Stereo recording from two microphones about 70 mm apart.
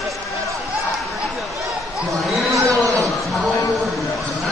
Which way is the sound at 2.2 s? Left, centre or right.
Centre.